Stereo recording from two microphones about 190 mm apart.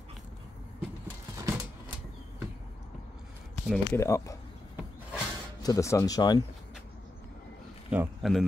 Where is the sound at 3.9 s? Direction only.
15° left (ahead or behind).